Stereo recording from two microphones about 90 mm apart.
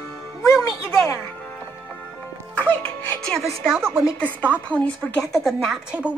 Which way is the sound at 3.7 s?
25° right (ahead or behind).